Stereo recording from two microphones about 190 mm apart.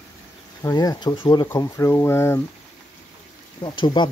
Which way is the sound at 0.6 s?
20° left (ahead or behind).